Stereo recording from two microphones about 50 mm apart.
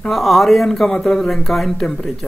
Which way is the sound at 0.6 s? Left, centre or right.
Centre.